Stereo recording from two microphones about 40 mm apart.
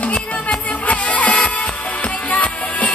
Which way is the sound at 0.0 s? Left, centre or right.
Left.